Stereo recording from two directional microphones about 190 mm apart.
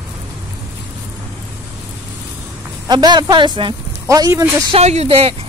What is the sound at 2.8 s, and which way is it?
Speech, 20° right (ahead or behind).